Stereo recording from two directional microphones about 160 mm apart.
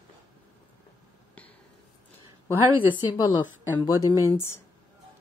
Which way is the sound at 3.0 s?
25° left (ahead or behind).